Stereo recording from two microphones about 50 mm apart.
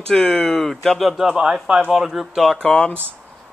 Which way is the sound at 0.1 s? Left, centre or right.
Centre.